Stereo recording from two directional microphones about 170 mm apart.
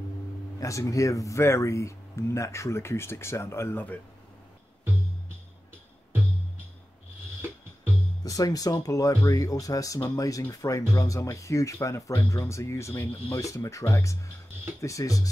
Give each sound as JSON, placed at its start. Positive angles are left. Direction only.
{"t": 0.6, "sound": "speech", "side_deg": 20}
{"t": 8.2, "sound": "speech", "side_deg": 20}